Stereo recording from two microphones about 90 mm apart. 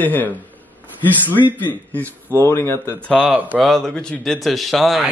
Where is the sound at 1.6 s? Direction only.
20° left (ahead or behind).